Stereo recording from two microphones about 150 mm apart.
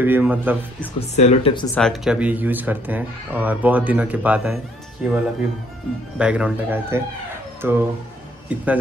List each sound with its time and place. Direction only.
0.0 s speech: 10° right (ahead or behind)
1.1 s speech: 45° left (ahead or behind)
1.8 s speech: 5° left (ahead or behind)
2.1 s speech: 10° right (ahead or behind)